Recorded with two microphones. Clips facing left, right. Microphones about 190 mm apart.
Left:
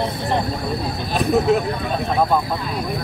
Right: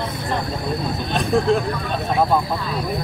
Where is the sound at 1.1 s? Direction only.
5° left (ahead or behind).